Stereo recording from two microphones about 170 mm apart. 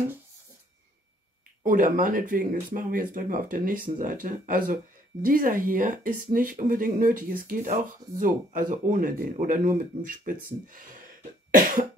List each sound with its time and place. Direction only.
1.6 s speech: 55° right (ahead or behind)